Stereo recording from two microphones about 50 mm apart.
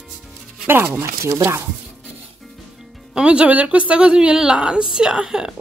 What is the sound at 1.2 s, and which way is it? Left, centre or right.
Speech, right.